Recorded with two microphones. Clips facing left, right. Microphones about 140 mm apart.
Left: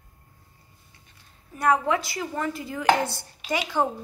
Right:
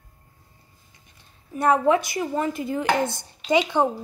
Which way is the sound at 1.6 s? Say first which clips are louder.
Right 4 dB; 25° right (ahead or behind).